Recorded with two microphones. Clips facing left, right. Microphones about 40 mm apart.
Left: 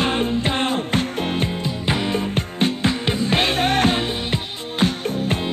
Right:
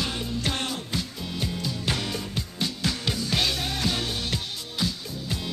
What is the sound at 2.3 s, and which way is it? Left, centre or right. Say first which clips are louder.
Music: left 9 dB; left.